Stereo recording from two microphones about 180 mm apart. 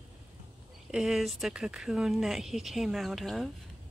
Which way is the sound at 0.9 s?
Centre (ahead or behind).